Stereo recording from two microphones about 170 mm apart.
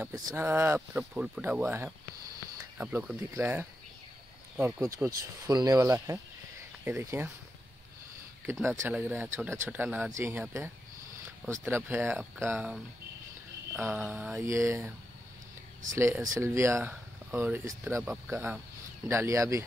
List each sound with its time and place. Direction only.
0.1 s speech: 20° right (ahead or behind)
8.6 s speech: 15° right (ahead or behind)
11.4 s speech: 15° right (ahead or behind)
14.4 s speech: 15° right (ahead or behind)
15.9 s speech: 15° right (ahead or behind)